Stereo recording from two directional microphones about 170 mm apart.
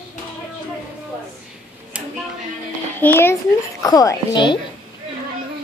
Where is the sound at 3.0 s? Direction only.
15° left (ahead or behind).